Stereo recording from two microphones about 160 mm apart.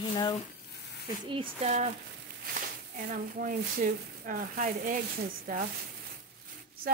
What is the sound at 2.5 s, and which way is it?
Speech, 55° right (ahead or behind).